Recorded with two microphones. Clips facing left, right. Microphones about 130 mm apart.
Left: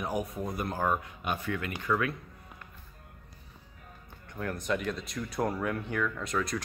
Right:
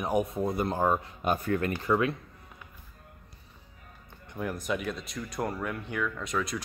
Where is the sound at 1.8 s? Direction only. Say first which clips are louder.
Right 2 dB; 25° right (ahead or behind).